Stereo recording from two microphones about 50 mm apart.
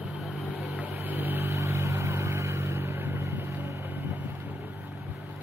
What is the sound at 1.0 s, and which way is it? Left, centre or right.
Vehicle, right.